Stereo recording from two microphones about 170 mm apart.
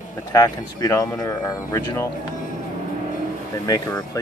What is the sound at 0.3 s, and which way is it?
Speech, 20° left (ahead or behind).